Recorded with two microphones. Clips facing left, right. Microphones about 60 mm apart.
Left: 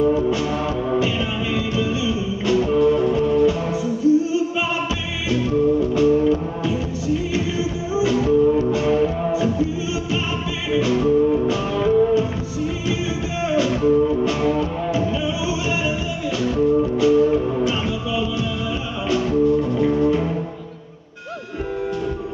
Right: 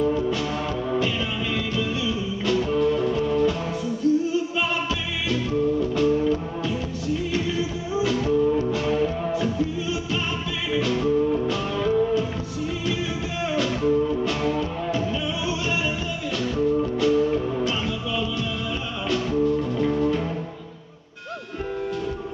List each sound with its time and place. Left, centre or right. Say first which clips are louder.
0.0 s music: left 5 dB; centre
10.7 s music: left 5 dB; centre
13.5 s music: left 5 dB; centre